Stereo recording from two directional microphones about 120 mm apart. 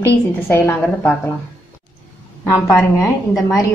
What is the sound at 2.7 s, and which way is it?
Speech, 15° left (ahead or behind).